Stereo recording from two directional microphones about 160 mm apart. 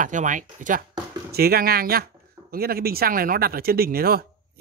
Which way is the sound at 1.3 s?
75° right (ahead or behind).